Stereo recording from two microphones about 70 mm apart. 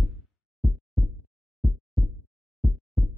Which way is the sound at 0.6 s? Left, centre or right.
Centre.